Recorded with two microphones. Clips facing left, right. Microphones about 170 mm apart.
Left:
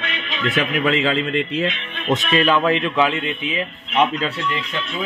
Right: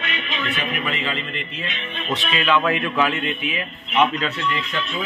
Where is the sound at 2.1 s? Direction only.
45° left (ahead or behind).